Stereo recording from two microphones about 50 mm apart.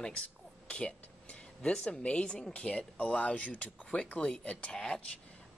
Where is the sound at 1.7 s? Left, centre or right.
Centre.